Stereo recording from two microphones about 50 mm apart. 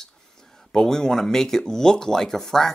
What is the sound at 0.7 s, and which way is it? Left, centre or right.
Speech, centre.